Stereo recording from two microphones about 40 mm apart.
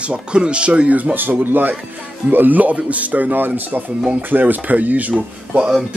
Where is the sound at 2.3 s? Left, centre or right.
Right.